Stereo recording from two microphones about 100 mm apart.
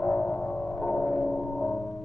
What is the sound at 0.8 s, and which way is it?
Gong, 10° left (ahead or behind).